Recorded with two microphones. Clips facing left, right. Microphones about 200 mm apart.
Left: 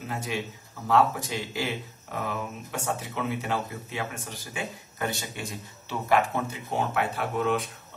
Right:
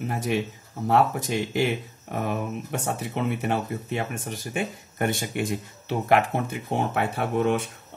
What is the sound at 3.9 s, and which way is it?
Speech, 55° right (ahead or behind).